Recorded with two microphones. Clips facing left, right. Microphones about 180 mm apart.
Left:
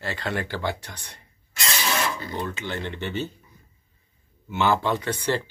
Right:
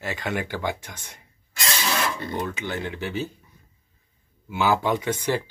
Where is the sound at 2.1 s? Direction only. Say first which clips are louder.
Right 2 dB; 25° right (ahead or behind).